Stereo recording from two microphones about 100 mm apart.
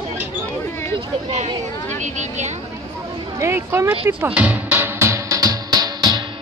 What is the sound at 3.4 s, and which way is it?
Music, 25° right (ahead or behind).